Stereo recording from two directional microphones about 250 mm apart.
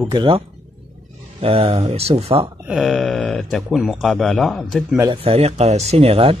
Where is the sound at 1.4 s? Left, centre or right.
Right.